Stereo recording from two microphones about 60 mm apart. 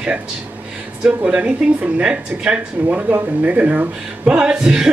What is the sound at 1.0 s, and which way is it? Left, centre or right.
Speech, right.